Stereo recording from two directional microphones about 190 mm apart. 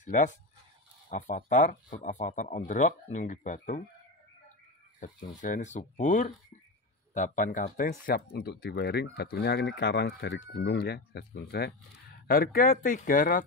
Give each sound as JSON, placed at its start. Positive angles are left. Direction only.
{"t": 0.0, "sound": "speech", "side_deg": 40}
{"t": 5.0, "sound": "speech", "side_deg": 45}